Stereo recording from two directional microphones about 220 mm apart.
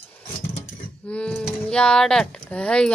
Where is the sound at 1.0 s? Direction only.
5° left (ahead or behind).